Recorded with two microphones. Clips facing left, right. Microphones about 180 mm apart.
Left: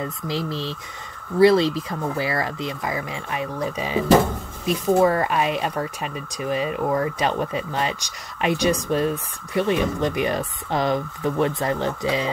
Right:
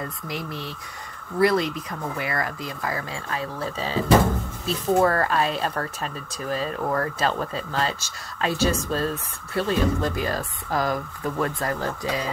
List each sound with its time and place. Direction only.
0.0 s speech: 30° left (ahead or behind)